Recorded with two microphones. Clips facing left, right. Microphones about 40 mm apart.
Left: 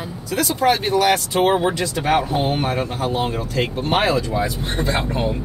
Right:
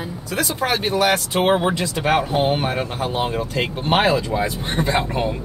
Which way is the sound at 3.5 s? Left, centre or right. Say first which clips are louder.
Even; right.